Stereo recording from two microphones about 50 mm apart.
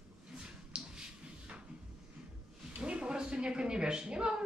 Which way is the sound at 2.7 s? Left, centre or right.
Right.